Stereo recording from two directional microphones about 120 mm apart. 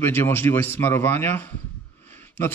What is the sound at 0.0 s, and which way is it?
A man's voice, 20° left (ahead or behind).